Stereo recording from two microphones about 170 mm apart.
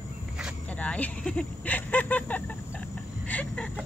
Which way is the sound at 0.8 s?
10° left (ahead or behind).